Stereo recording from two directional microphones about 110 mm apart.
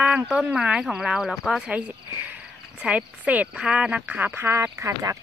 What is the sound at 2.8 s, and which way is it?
Speech, 10° right (ahead or behind).